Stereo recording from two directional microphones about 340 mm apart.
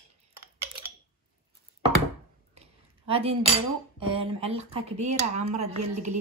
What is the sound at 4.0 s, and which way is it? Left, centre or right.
A woman's voice, centre.